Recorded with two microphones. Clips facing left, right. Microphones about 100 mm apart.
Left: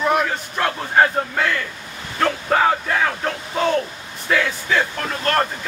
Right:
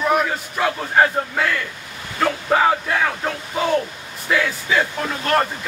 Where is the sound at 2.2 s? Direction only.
5° right (ahead or behind).